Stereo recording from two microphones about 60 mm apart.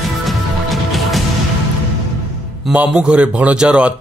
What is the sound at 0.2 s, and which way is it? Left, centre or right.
Music, centre.